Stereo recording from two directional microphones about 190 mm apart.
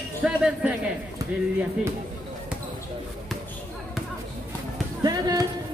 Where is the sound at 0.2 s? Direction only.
Centre (ahead or behind).